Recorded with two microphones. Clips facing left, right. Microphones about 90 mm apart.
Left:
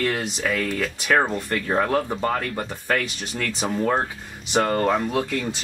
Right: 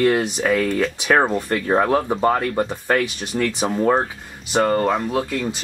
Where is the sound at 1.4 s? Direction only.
15° right (ahead or behind).